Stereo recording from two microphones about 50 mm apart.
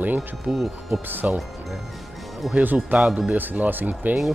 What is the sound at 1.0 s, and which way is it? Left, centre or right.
Speech, right.